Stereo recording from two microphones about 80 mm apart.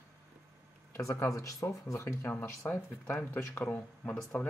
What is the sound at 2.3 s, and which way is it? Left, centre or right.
Speech, left.